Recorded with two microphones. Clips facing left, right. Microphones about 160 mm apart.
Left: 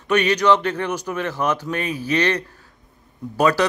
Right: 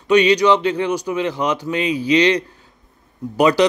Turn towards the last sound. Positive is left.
turn(degrees=-15)  # may be behind; listen again after turning